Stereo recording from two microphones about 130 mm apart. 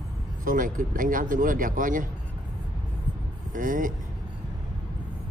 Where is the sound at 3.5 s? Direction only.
85° right.